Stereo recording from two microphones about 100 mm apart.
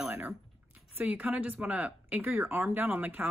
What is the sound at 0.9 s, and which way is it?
A woman's voice, 15° right (ahead or behind).